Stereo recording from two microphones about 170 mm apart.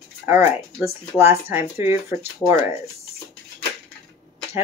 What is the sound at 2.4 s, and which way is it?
Speech, centre (ahead or behind).